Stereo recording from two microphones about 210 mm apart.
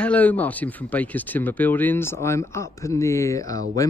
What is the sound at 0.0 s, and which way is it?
Speech, 5° left (ahead or behind).